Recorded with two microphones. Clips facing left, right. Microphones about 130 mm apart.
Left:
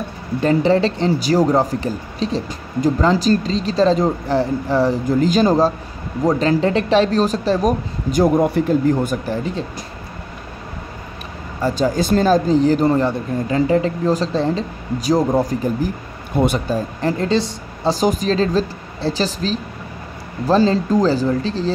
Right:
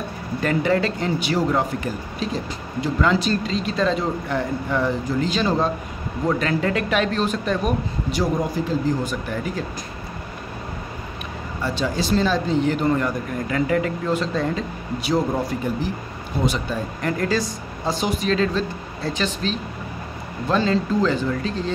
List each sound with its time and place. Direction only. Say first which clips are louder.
0.4 s speech: left 5 dB; 30° left (ahead or behind); by 9.2 s 55° left (ahead or behind)
9.3 s speech: left 4 dB; 30° left (ahead or behind)
11.6 s speech: left 6 dB; 40° left (ahead or behind)